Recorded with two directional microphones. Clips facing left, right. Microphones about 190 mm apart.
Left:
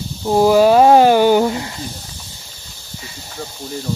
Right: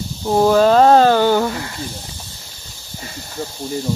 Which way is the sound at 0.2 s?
5° left (ahead or behind).